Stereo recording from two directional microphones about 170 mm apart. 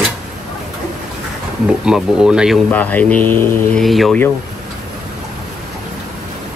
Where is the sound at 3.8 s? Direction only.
Centre (ahead or behind).